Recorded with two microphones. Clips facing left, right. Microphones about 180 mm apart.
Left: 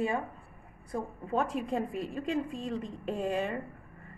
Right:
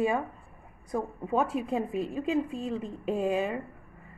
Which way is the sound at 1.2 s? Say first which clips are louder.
Right 2 dB; 10° right (ahead or behind).